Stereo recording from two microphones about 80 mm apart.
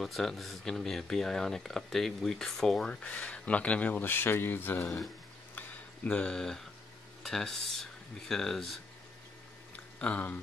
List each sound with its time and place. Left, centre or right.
0.0 s speech: centre
2.9 s speech: centre
5.5 s a sound: left
6.1 s speech: centre
9.9 s speech: centre